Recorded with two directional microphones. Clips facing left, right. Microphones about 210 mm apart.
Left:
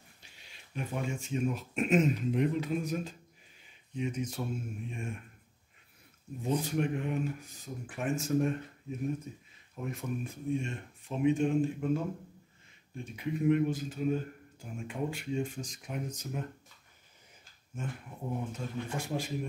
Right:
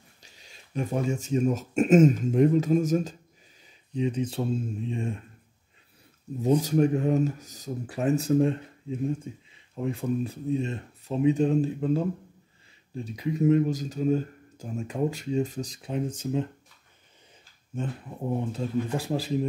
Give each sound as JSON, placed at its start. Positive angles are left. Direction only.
{"t": 0.2, "sound": "speech", "side_deg": -40}
{"t": 3.9, "sound": "speech", "side_deg": -30}
{"t": 6.4, "sound": "speech", "side_deg": -40}
{"t": 9.3, "sound": "speech", "side_deg": -90}
{"t": 9.8, "sound": "speech", "side_deg": -30}
{"t": 18.3, "sound": "speech", "side_deg": -30}